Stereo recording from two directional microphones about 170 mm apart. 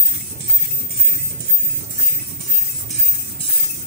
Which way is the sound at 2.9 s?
35° left (ahead or behind).